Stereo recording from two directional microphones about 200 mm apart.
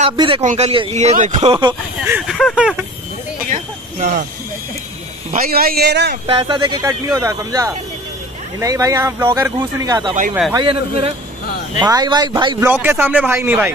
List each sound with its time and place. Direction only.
0.0 s speech: 30° right (ahead or behind)
2.0 s a sound: 5° right (ahead or behind)
3.4 s vehicle: 40° right (ahead or behind)
5.3 s a man's voice: 50° right (ahead or behind)
6.2 s speech: 25° right (ahead or behind)
12.6 s speech: 10° right (ahead or behind)